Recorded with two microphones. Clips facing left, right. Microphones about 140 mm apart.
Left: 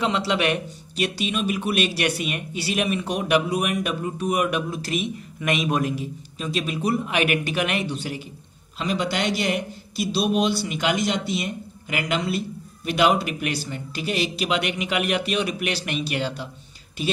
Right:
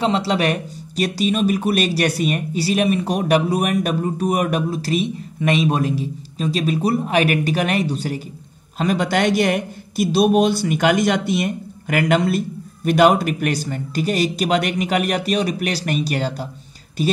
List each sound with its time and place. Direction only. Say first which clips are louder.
0.0 s a man's voice: right 4 dB; 35° right (ahead or behind)